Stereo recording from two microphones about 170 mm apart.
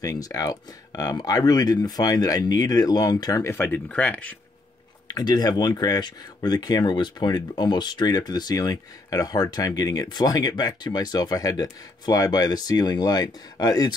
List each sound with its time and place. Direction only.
0.0 s speech: 20° left (ahead or behind)
5.0 s speech: 20° left (ahead or behind)